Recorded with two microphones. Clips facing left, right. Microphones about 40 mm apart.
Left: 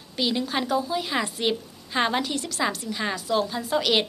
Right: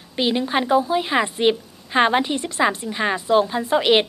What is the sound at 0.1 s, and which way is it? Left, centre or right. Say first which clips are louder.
A woman's voice: right 5 dB; right.